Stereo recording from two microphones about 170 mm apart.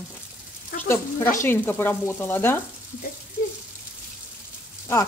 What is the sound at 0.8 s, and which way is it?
Sizzle, 15° left (ahead or behind).